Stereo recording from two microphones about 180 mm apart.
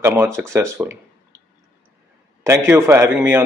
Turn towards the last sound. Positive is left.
turn(degrees=-10)  # may be behind; listen again after turning